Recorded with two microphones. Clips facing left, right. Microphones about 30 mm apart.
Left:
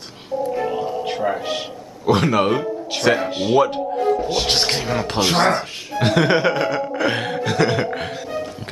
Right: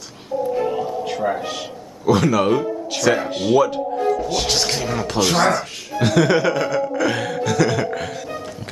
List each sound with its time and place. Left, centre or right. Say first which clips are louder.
1.2 s speech: even; centre
2.0 s a man's voice: even; left
3.1 s speech: even; centre
3.5 s a man's voice: even; left